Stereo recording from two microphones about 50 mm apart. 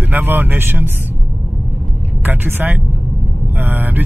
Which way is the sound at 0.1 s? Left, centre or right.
Right.